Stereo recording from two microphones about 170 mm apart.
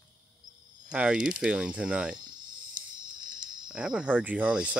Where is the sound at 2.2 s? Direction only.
25° right (ahead or behind).